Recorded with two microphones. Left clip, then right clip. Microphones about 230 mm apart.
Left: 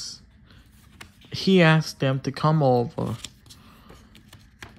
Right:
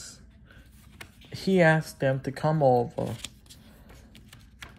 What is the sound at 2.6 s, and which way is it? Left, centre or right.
Speech, left.